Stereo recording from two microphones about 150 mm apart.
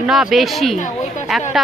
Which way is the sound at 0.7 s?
55° left (ahead or behind).